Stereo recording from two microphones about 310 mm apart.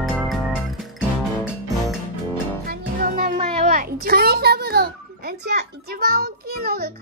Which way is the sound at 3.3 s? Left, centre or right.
Right.